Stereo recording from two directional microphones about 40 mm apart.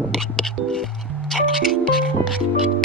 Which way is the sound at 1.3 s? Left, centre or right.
Centre.